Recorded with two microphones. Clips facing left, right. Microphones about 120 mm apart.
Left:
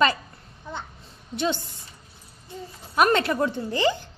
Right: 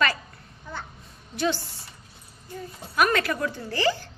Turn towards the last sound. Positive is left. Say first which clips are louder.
# left 2 dB
turn(degrees=20)  # may be behind; listen again after turning